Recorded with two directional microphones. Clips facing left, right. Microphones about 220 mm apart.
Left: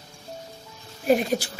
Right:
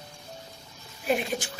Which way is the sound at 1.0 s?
40° left (ahead or behind).